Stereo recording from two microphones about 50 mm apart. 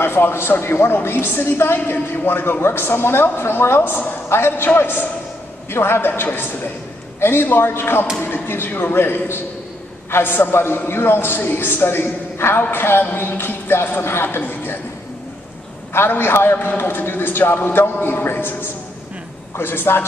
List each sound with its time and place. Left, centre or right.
0.0 s a man's voice: left
7.2 s a man's voice: left
15.9 s a man's voice: left